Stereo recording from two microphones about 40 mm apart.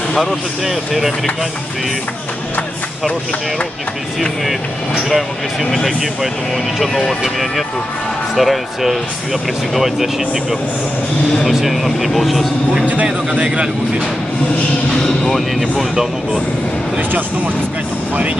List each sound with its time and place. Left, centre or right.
0.7 s speech: centre
5.1 s speech: centre
11.4 s speech: centre
12.8 s speech: right
14.9 s speech: centre